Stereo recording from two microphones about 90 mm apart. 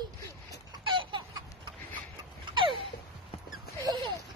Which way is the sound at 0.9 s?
60° right (ahead or behind).